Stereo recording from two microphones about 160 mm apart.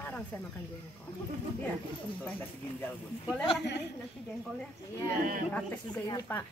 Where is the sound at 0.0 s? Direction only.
10° left (ahead or behind).